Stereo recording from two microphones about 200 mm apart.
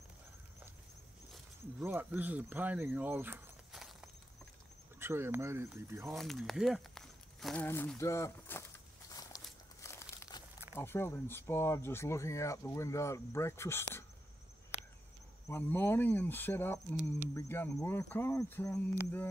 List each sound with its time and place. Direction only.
1.8 s speech: 10° right (ahead or behind)
4.9 s speech: 10° right (ahead or behind)
6.0 s speech: centre (ahead or behind)
8.0 s walk: 15° left (ahead or behind)
10.7 s speech: 10° left (ahead or behind)
15.4 s speech: 10° left (ahead or behind)